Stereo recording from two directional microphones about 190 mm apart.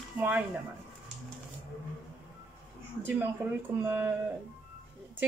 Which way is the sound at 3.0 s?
10° right (ahead or behind).